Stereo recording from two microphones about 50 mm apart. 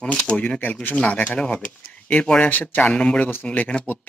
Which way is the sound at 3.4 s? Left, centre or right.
Left.